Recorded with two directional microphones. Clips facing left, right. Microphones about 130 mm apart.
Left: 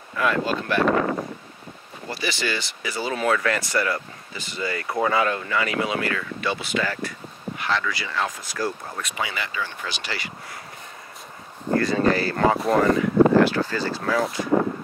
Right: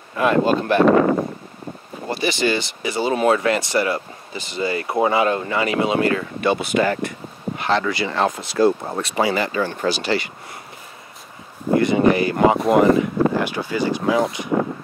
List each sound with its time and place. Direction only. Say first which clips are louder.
0.1 s speech: right 6 dB; 25° right (ahead or behind)
2.0 s speech: right 7 dB; 20° right (ahead or behind)
6.4 s speech: right 7 dB; 50° right (ahead or behind)
6.8 s speech: right 7 dB; 20° right (ahead or behind)
11.7 s speech: right 5 dB; 20° right (ahead or behind)